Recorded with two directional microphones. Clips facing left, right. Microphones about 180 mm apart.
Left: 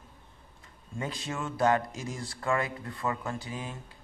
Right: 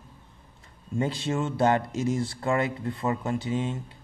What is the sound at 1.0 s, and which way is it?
Speech, 30° right (ahead or behind).